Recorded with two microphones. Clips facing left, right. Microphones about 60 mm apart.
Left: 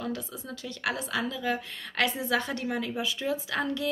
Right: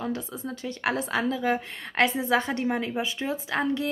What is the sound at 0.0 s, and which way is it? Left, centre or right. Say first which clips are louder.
A woman's voice: right 3 dB; right.